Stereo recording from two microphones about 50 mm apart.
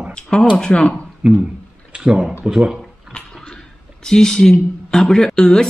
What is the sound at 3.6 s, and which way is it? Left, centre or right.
Speech, centre.